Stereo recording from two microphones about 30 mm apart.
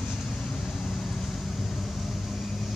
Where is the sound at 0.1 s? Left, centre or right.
Centre.